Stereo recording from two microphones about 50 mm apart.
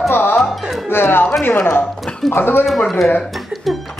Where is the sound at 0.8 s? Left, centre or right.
Left.